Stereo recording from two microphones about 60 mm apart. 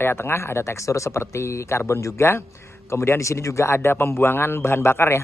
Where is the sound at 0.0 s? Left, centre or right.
Left.